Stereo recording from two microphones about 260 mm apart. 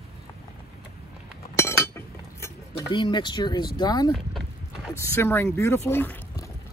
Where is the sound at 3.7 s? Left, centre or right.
Centre.